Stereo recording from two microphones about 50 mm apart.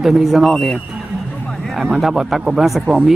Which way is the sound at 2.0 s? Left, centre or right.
Centre.